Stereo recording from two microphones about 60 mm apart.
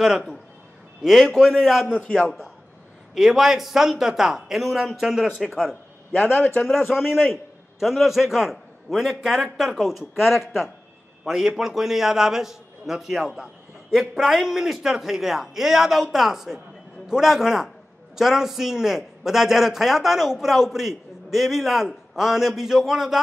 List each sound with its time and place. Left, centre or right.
1.0 s a man's voice: centre
1.9 s a man's voice: centre
3.2 s a man's voice: centre
6.1 s a man's voice: left
6.7 s a man's voice: centre